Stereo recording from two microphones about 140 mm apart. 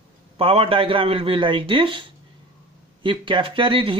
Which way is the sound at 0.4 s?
40° right (ahead or behind).